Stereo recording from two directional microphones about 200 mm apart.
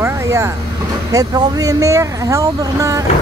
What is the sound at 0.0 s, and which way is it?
Vehicle, 15° right (ahead or behind).